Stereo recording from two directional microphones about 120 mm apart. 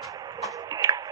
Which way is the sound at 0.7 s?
30° right (ahead or behind).